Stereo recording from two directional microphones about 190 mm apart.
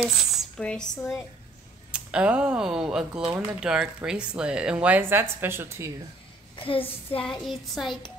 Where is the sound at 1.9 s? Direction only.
5° right (ahead or behind).